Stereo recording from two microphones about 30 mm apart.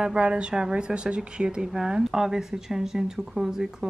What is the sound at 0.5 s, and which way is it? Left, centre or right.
A man's voice, right.